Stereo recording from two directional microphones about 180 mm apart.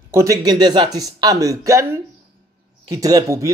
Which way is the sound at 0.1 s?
20° right (ahead or behind).